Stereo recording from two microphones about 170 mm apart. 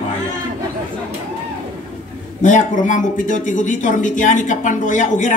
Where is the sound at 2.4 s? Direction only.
50° left (ahead or behind).